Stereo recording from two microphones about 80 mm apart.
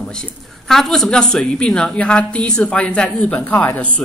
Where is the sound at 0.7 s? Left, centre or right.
Centre; by 3.8 s left.